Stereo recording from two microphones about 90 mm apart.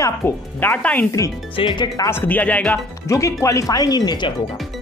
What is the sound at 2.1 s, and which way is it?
Speech, 20° left (ahead or behind).